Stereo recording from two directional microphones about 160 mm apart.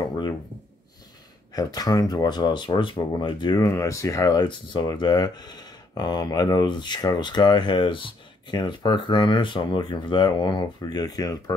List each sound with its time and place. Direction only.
0.1 s speech: 25° left (ahead or behind)
1.5 s speech: 25° left (ahead or behind)